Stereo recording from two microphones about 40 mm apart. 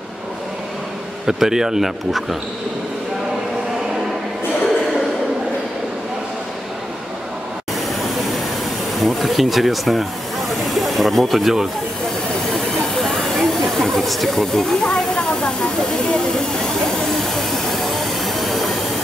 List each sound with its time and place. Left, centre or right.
1.2 s a man's voice: centre
9.0 s speech: centre
12.5 s hiss: centre
15.8 s speech: centre
16.6 s vehicle: centre